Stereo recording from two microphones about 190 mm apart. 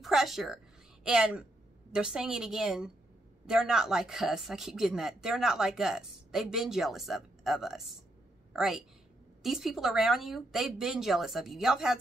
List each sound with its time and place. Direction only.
0.0 s a woman's voice: centre (ahead or behind)